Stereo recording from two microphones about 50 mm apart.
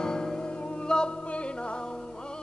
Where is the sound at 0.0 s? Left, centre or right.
Centre.